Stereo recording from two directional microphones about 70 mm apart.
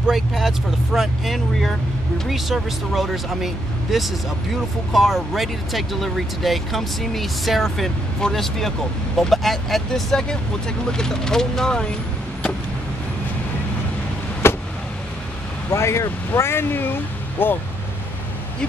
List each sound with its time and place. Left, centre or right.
0.0 s speech: centre
14.4 s vehicle: left
15.7 s speech: left